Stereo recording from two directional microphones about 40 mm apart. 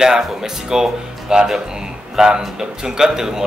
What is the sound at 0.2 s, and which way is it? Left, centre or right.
Speech, centre.